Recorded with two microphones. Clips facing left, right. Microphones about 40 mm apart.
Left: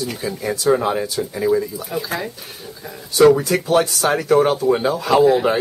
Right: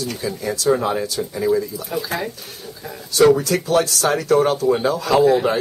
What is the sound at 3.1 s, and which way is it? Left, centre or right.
Speech, centre.